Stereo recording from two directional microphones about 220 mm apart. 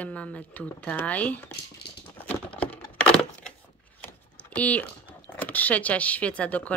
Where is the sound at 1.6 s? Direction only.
45° left (ahead or behind).